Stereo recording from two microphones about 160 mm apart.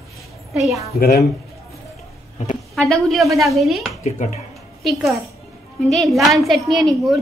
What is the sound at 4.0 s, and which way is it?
Speech, 45° left (ahead or behind).